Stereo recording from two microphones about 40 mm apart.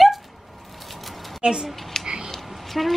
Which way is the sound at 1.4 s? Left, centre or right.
Right.